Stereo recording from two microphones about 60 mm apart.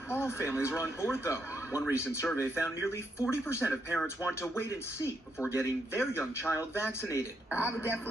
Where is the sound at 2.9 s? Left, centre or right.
Left.